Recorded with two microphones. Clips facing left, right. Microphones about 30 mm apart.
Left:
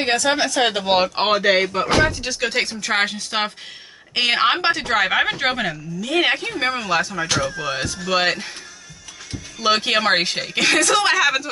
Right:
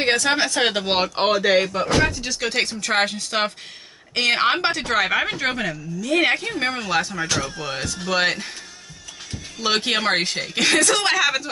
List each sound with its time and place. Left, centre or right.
0.0 s speech: centre
1.1 s a woman's voice: centre
5.4 s speech: left
6.1 s a woman's voice: centre
7.6 s a woman's voice: centre
8.2 s speech: centre
9.6 s speech: centre
10.1 s speech: left
10.5 s a woman's voice: centre